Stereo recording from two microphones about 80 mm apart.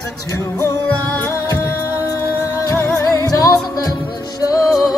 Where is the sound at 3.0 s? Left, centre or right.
Left.